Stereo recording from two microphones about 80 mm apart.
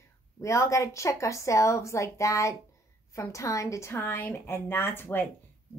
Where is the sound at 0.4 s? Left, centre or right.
Left.